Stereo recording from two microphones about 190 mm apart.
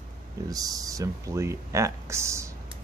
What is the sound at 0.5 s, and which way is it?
Speech, 20° right (ahead or behind).